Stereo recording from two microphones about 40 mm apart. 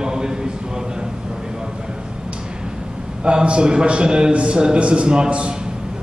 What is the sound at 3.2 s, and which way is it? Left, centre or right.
A man's voice, right.